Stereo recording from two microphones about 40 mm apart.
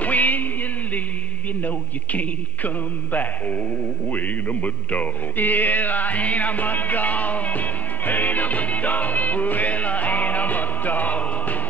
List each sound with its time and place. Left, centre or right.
0.0 s music: left
1.6 s speech: left